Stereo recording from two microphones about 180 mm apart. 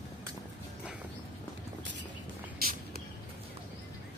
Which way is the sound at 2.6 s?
55° right (ahead or behind).